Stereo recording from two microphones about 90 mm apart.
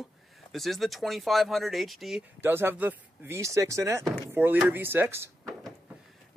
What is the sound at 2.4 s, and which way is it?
Speech, 25° right (ahead or behind).